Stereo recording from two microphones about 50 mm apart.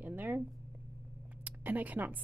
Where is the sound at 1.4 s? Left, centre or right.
Right.